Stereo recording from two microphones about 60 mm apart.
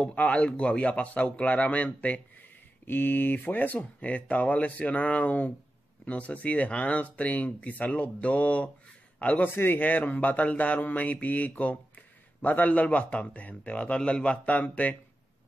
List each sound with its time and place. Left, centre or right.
0.0 s speech: left
2.9 s speech: left